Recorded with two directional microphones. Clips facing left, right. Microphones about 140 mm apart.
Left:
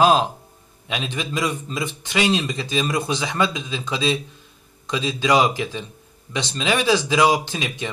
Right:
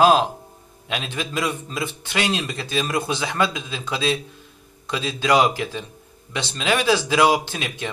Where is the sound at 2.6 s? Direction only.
5° right (ahead or behind).